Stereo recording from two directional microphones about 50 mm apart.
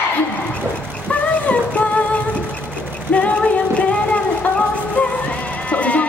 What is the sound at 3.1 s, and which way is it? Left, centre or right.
Music, left.